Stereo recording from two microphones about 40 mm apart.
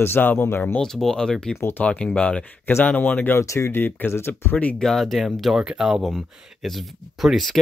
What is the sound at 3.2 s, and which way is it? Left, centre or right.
Speech, left.